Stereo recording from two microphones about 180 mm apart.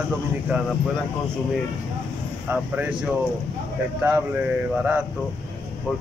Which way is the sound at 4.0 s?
10° right (ahead or behind).